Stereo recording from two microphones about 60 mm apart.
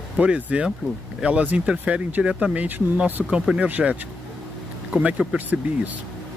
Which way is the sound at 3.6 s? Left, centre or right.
Right.